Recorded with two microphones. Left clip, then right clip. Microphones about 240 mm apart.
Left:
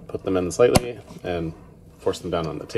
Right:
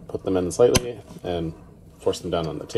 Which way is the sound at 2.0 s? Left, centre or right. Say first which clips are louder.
Even; left.